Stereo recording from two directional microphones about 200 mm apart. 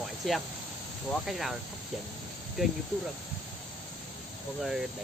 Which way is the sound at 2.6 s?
Centre (ahead or behind).